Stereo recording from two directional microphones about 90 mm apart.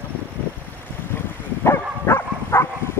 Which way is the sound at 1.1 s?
25° left (ahead or behind).